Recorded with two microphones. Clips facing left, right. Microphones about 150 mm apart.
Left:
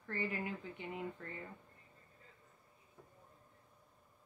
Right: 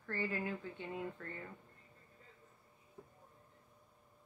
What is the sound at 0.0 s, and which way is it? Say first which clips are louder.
Speech: right 1 dB; 20° left (ahead or behind).